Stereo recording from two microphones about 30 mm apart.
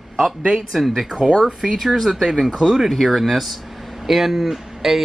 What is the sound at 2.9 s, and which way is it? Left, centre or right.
Speech, centre.